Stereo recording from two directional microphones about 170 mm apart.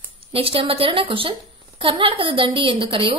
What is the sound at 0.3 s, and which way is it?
A woman's voice, 35° right (ahead or behind).